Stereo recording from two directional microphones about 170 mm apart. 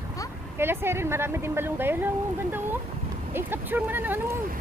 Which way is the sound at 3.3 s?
10° right (ahead or behind).